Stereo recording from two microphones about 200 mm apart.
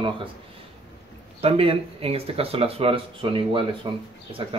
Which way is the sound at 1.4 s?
30° right (ahead or behind).